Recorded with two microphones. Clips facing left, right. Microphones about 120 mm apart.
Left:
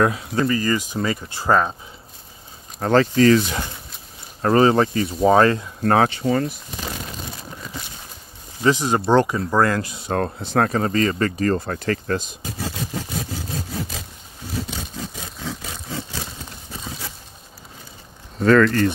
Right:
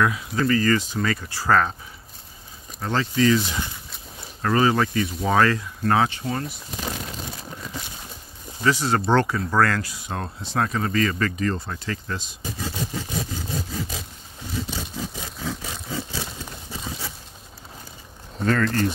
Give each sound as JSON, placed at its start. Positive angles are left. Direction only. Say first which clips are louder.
{"t": 0.0, "sound": "speech", "louder": "left 3 dB", "side_deg": 35}
{"t": 0.5, "sound": "speech", "louder": "right 1 dB", "side_deg": 15}
{"t": 2.8, "sound": "speech", "louder": "left 6 dB", "side_deg": 50}
{"t": 4.4, "sound": "speech", "louder": "left 5 dB", "side_deg": 35}
{"t": 5.8, "sound": "speech", "louder": "left 3 dB", "side_deg": 45}
{"t": 6.2, "sound": "speech", "louder": "left 8 dB", "side_deg": 90}
{"t": 8.6, "sound": "speech", "louder": "left 3 dB", "side_deg": 15}
{"t": 10.1, "sound": "speech", "louder": "left 6 dB", "side_deg": 55}
{"t": 11.5, "sound": "speech", "louder": "left 7 dB", "side_deg": 55}
{"t": 15.0, "sound": "a sound", "louder": "right 1 dB", "side_deg": 0}
{"t": 18.4, "sound": "speech", "louder": "left 7 dB", "side_deg": 90}